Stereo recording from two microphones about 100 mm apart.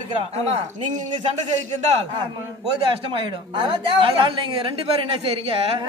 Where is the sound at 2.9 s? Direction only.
55° right (ahead or behind).